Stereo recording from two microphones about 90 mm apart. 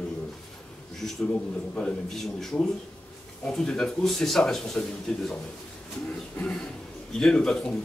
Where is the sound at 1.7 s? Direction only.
5° left (ahead or behind).